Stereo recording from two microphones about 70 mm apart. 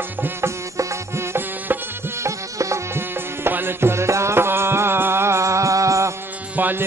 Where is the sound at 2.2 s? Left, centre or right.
Right.